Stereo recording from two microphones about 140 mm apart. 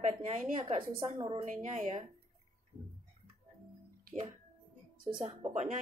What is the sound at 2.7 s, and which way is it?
Tick-tock, 20° right (ahead or behind).